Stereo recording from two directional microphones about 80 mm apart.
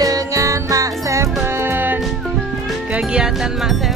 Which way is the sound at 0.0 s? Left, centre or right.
Right.